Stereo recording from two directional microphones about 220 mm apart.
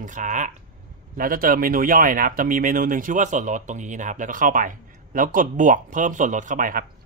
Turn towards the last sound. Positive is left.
turn(degrees=-40)  # may be behind; listen again after turning